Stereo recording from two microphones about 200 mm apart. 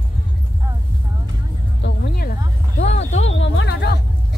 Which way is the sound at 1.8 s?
55° left (ahead or behind).